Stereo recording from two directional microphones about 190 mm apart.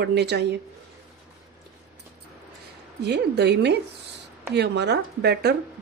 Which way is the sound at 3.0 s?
60° right (ahead or behind).